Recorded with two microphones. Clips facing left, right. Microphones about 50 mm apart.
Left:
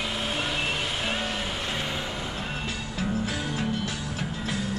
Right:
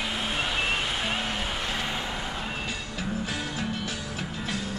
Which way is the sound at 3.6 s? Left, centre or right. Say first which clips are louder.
Left 2 dB; centre.